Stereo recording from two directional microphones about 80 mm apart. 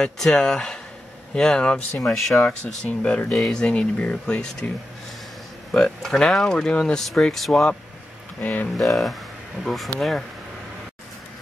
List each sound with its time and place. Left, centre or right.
0.0 s speech: centre
2.0 s speech: centre
2.4 s speech: centre
5.7 s speech: centre
8.4 s speech: left
8.7 s speech: centre